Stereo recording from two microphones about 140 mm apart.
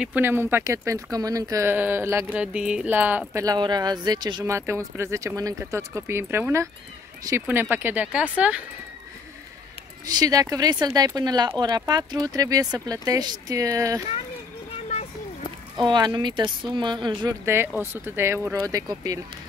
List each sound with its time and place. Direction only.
0.0 s speech: 15° right (ahead or behind)
3.4 s speech: 30° right (ahead or behind)
4.5 s speech: 20° right (ahead or behind)
10.0 s speech: 25° right (ahead or behind)
14.9 s a sound: 55° left (ahead or behind)
15.8 s speech: 30° right (ahead or behind)
17.5 s speech: 15° right (ahead or behind)